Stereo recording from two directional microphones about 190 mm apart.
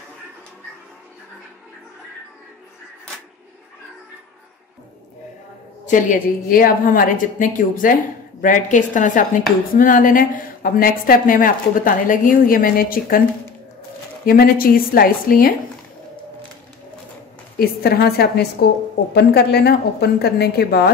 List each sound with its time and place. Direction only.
5.9 s a woman's voice: 40° left (ahead or behind)
14.2 s a woman's voice: 50° left (ahead or behind)
17.6 s a woman's voice: 55° left (ahead or behind)